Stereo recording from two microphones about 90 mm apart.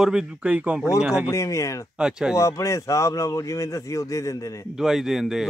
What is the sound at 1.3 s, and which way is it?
Speech, 35° left (ahead or behind).